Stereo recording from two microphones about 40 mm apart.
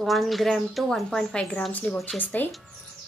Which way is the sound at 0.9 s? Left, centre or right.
Centre.